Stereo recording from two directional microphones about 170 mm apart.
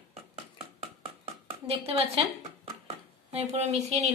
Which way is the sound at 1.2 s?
35° right (ahead or behind).